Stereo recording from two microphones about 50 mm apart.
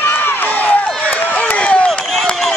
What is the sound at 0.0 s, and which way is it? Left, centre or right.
Run, left.